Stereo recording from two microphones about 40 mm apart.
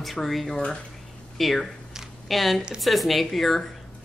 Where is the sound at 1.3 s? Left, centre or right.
Centre.